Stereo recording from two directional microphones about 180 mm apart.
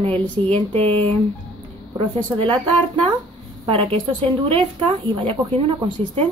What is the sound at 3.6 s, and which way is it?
Speech, 30° right (ahead or behind).